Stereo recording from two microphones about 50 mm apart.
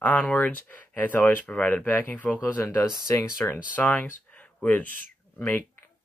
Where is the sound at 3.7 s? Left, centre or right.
Left.